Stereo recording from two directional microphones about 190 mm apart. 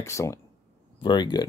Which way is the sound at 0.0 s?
15° left (ahead or behind).